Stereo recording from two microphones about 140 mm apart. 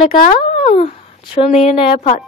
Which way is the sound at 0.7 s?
50° left (ahead or behind).